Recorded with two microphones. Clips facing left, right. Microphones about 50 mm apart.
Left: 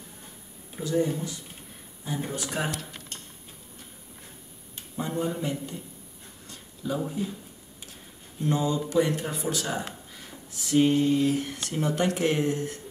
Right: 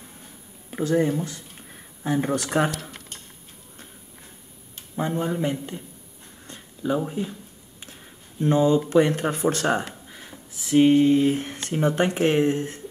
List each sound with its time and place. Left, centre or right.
0.7 s a sound: right
1.0 s speech: right
2.2 s speech: right
5.1 s speech: right
6.4 s a sound: right
7.1 s speech: right
8.4 s speech: right
9.2 s speech: right
10.6 s speech: right